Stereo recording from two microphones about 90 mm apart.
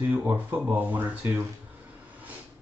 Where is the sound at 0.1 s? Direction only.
25° right (ahead or behind).